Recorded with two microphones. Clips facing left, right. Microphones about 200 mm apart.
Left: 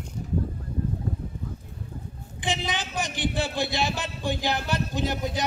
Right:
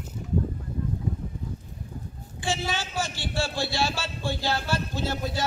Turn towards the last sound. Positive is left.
turn(degrees=15)  # may be behind; listen again after turning